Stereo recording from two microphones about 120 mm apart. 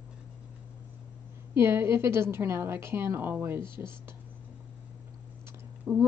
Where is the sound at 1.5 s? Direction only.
20° right (ahead or behind).